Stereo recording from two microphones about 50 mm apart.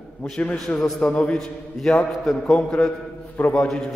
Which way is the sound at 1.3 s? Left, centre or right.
Centre.